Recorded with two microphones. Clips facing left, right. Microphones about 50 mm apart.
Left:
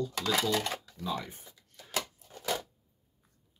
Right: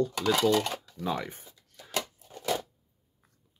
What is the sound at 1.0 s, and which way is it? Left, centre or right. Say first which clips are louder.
Speech: right 4 dB; right.